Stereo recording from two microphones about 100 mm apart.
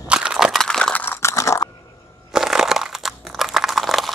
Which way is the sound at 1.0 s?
25° left (ahead or behind).